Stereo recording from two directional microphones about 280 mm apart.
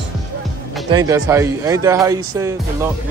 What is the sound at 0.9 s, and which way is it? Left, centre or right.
Speech, centre.